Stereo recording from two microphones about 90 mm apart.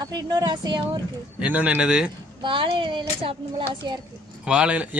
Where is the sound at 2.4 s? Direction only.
65° right (ahead or behind).